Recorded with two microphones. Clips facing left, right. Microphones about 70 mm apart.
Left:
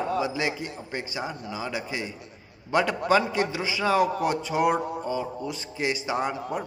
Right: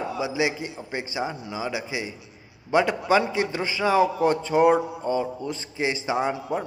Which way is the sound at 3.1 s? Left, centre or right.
Centre.